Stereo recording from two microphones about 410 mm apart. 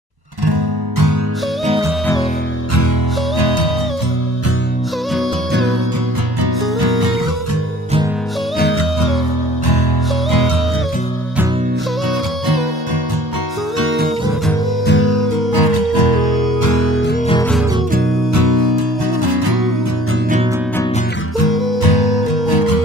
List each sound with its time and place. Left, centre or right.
0.5 s music: right
3.3 s music: left
6.4 s music: right
8.5 s music: left
13.7 s music: right
14.9 s music: left
16.7 s music: left
17.3 s music: centre
18.3 s music: right
21.8 s music: left